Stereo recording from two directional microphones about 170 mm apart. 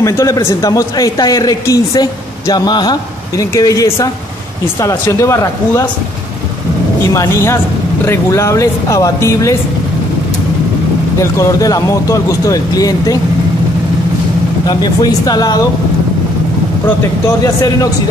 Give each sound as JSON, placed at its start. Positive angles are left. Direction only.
{"t": 0.0, "sound": "speech", "side_deg": 20}
{"t": 7.1, "sound": "speech", "side_deg": 15}
{"t": 11.1, "sound": "speech", "side_deg": 15}
{"t": 14.7, "sound": "speech", "side_deg": 25}